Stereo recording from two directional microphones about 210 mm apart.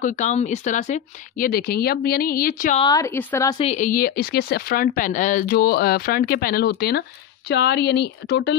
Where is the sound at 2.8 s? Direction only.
15° left (ahead or behind).